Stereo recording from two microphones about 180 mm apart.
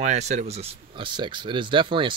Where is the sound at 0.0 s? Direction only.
40° right (ahead or behind).